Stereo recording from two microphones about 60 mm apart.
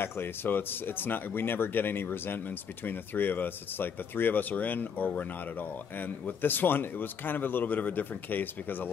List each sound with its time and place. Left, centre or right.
0.0 s speech: left